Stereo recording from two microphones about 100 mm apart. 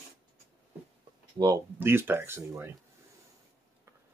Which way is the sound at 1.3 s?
40° right (ahead or behind).